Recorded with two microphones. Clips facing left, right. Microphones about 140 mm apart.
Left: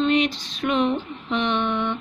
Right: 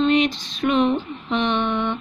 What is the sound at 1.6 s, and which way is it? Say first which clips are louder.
Mantra: right 1 dB; 20° right (ahead or behind).